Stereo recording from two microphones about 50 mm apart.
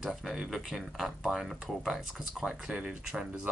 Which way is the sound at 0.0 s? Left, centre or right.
Centre.